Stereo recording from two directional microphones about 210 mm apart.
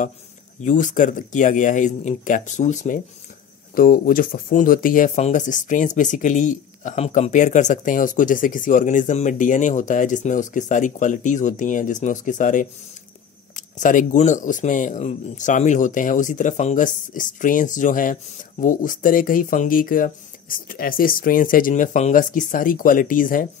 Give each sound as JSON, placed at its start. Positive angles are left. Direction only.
{"t": 0.6, "sound": "speech", "side_deg": 35}